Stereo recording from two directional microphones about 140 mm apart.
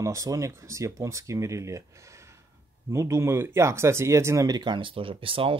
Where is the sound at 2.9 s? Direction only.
20° right (ahead or behind).